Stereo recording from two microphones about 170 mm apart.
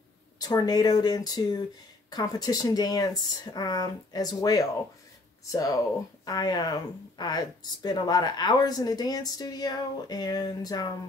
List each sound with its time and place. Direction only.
0.4 s speech: 25° left (ahead or behind)